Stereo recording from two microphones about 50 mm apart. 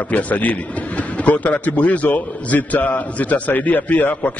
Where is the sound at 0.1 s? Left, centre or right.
Left.